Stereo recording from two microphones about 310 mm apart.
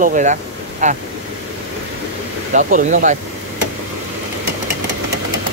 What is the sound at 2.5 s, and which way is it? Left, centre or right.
Speech, right.